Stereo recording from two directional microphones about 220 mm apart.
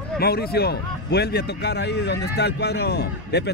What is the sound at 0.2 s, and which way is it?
Speech, 45° left (ahead or behind).